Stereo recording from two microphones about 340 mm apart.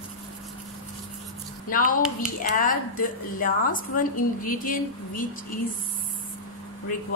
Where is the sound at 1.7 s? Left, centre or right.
Left.